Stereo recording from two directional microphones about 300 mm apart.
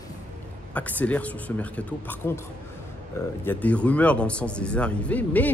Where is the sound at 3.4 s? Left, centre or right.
Centre.